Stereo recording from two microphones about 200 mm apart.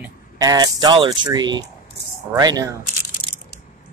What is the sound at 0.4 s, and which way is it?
Speech, 20° right (ahead or behind).